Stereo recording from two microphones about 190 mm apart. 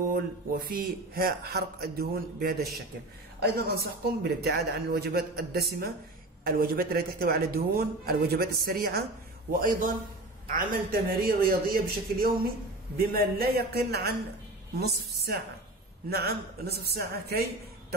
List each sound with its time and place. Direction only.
0.1 s a man's voice: 50° right (ahead or behind)